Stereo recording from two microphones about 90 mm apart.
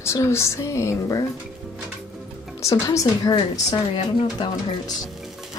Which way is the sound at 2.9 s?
35° left (ahead or behind).